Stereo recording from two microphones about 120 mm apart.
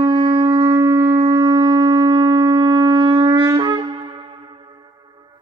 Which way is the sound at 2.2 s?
40° right (ahead or behind).